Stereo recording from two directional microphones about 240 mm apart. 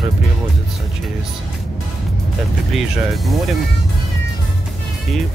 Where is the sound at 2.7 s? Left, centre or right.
Centre.